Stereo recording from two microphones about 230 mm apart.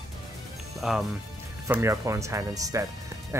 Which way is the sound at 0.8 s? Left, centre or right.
Centre.